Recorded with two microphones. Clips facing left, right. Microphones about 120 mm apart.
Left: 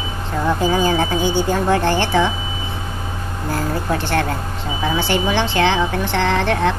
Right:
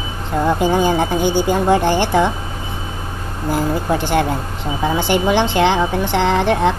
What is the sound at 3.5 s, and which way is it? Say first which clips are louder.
Speech: right 3 dB; 15° right (ahead or behind).